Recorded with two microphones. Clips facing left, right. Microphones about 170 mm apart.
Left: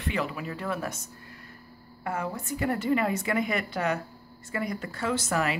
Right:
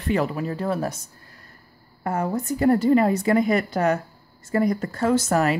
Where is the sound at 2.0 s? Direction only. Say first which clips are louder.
Right 7 dB; 40° right (ahead or behind).